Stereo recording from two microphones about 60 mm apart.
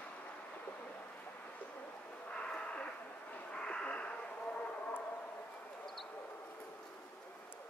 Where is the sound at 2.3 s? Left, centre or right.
Centre.